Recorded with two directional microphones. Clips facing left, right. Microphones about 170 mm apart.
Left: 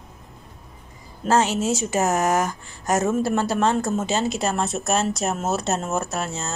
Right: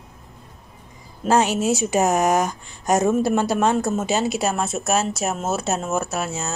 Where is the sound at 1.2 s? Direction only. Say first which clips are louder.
Right 2 dB; 15° right (ahead or behind).